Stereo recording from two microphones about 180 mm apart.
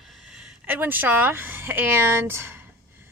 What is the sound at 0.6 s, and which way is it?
A woman's voice, 10° right (ahead or behind).